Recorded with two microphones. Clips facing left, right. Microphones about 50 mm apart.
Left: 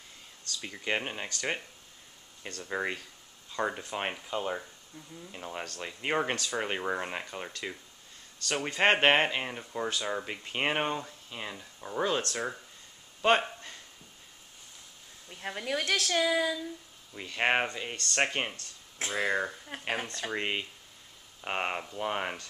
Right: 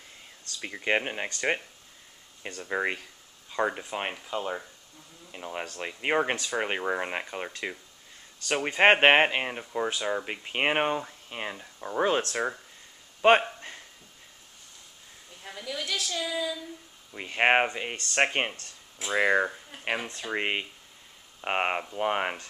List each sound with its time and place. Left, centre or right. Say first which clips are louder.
0.5 s speech: right 5 dB; right
3.8 s speech: right 1 dB; centre
13.6 s a sound: right 4 dB; right
15.4 s speech: left 3 dB; left
17.1 s speech: right 5 dB; right
19.1 s speech: right 6 dB; right
19.7 s speech: left 5 dB; left
20.2 s speech: right 4 dB; right